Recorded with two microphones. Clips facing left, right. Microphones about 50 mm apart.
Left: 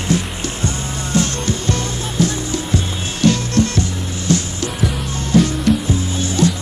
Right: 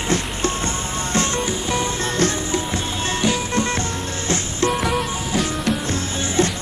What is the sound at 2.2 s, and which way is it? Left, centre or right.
Music, right.